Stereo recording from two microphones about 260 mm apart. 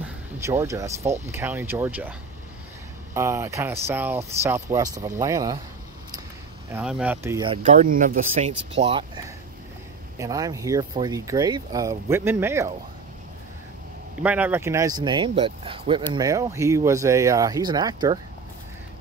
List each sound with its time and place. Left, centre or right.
0.0 s a sound: centre
1.3 s speech: centre
3.2 s speech: centre
6.7 s speech: centre
14.2 s speech: centre